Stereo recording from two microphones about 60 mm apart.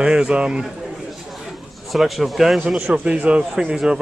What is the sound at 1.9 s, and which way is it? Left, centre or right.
Speech, centre.